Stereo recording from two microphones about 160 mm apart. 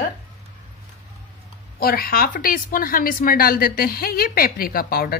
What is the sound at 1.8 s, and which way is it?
A woman's voice, 70° left (ahead or behind).